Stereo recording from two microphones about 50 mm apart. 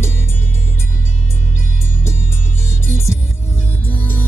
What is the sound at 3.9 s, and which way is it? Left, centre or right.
Music, left.